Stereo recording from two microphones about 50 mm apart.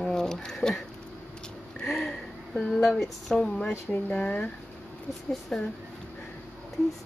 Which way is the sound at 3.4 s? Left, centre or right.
Centre.